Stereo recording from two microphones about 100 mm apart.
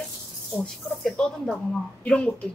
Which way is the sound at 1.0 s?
5° left (ahead or behind).